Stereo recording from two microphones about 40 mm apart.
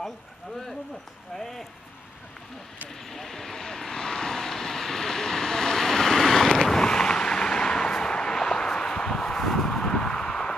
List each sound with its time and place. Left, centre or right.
1.3 s speech: centre
3.1 s vehicle: centre